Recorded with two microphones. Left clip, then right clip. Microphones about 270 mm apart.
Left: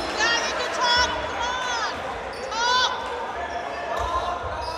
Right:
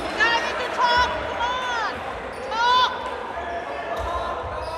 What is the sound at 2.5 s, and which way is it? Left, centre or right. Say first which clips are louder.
Basketball bounce: right 3 dB; right.